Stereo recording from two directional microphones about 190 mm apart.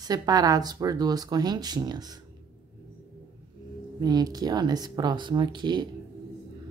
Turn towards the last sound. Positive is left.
turn(degrees=-25)  # may be behind; listen again after turning